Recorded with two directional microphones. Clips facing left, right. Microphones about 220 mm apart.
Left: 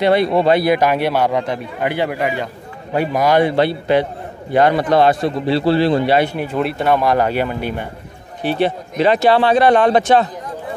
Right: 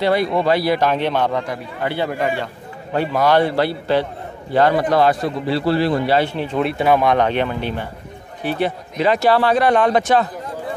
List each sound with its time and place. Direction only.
0.0 s a man's voice: 25° left (ahead or behind)
6.1 s speech: 15° left (ahead or behind)
8.5 s a man's voice: 30° left (ahead or behind)